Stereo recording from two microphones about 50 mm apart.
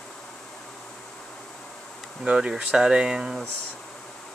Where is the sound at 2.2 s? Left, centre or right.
Centre.